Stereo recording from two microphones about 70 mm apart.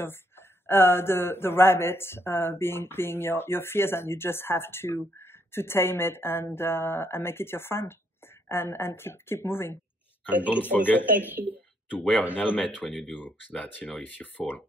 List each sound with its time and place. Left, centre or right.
0.7 s speech: left
10.3 s speech: right
10.6 s speech: left
11.1 s speech: right
12.2 s speech: left
12.8 s speech: centre
14.0 s speech: left